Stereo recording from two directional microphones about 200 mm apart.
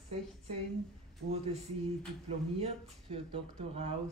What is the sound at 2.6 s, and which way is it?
Speech, 30° right (ahead or behind).